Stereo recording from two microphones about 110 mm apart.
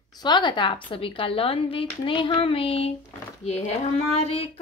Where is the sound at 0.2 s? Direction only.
45° left (ahead or behind); by 2.9 s 60° left (ahead or behind).